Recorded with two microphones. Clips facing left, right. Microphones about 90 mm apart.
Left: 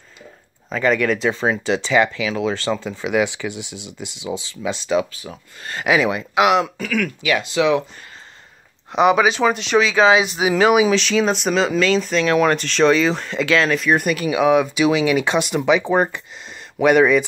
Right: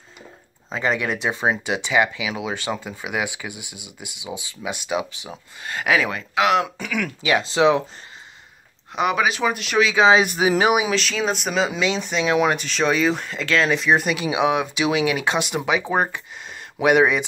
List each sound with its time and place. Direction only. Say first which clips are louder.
0.7 s speech: left 5 dB; 25° right (ahead or behind); by 6.2 s 5° left (ahead or behind)
6.6 s speech: left 3 dB; 15° right (ahead or behind)
8.9 s speech: left 6 dB; centre (ahead or behind)
10.5 s speech: left 5 dB; 20° right (ahead or behind)
10.8 s speech: left 6 dB; centre (ahead or behind)
14.0 s speech: left 3 dB; 15° right (ahead or behind)